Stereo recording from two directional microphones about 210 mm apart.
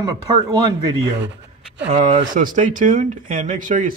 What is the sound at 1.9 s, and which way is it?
Speech, 30° right (ahead or behind).